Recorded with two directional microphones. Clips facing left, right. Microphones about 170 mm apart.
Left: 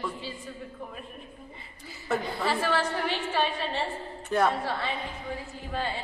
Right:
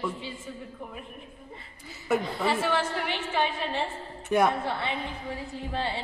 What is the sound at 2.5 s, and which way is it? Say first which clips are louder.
A woman's voice: even; 20° right (ahead or behind).